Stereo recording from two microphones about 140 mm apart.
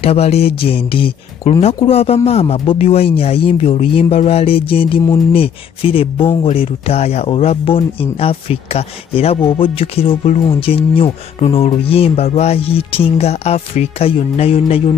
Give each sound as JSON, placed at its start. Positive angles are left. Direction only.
{"t": 0.0, "sound": "speech", "side_deg": 45}